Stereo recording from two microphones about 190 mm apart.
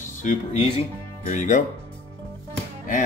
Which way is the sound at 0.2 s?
40° left (ahead or behind).